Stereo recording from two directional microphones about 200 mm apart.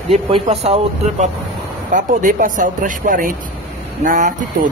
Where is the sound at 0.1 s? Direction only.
30° right (ahead or behind).